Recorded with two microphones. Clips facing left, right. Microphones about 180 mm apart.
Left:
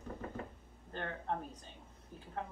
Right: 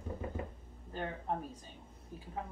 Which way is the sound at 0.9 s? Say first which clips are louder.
Right 2 dB; 5° right (ahead or behind).